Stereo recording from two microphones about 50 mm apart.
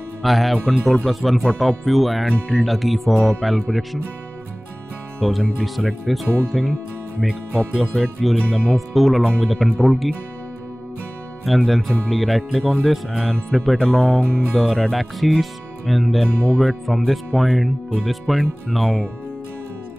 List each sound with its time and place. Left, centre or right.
0.2 s speech: centre
5.2 s speech: centre
7.7 s speech: centre
8.2 s speech: centre
11.4 s speech: centre
13.7 s speech: centre
14.5 s speech: centre